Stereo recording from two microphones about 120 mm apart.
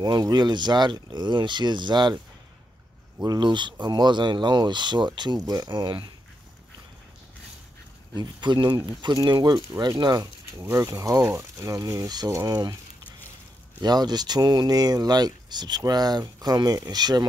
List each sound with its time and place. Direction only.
0.0 s speech: 35° right (ahead or behind)
3.3 s speech: 40° right (ahead or behind)
8.2 s speech: 40° right (ahead or behind)
13.7 s speech: 35° right (ahead or behind)